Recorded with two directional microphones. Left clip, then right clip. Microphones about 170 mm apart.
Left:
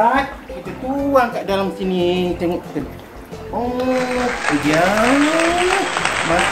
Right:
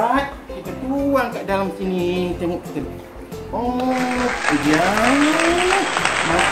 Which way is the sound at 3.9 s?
Centre (ahead or behind).